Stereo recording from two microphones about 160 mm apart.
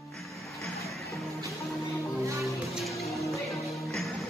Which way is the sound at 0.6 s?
Centre (ahead or behind).